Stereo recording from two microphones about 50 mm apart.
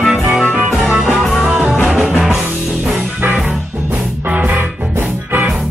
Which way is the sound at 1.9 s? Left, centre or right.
Centre.